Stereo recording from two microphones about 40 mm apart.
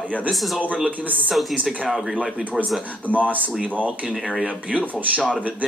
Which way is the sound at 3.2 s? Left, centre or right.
Right.